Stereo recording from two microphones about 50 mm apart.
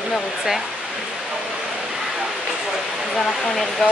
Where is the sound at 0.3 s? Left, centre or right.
Centre.